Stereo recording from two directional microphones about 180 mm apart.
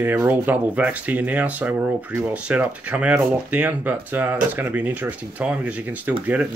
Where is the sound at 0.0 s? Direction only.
15° right (ahead or behind).